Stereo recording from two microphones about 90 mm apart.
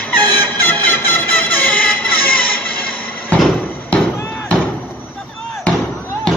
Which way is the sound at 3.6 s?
15° left (ahead or behind).